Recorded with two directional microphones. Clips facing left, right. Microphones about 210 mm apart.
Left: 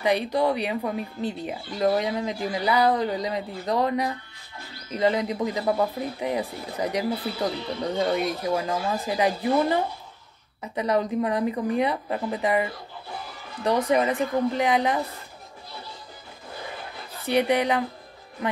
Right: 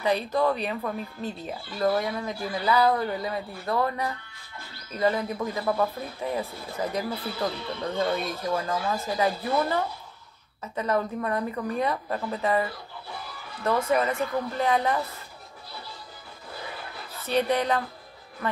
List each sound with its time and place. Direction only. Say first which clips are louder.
0.0 s speech: left 2 dB; 15° left (ahead or behind)
17.3 s speech: left 2 dB; 15° left (ahead or behind)